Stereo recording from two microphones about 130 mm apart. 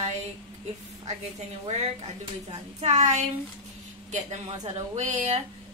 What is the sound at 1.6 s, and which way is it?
A woman's voice, 55° right (ahead or behind).